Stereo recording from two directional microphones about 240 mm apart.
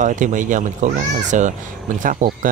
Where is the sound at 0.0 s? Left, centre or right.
Right.